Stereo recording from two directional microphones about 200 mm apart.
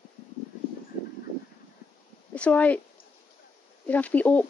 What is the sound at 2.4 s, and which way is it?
Speech, 5° left (ahead or behind).